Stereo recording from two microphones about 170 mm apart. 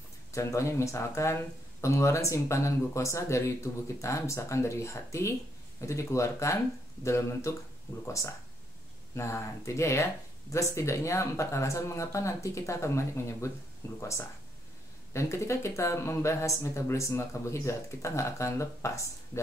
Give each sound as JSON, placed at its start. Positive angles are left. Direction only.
{"t": 0.3, "sound": "speech", "side_deg": 15}
{"t": 15.1, "sound": "speech", "side_deg": 15}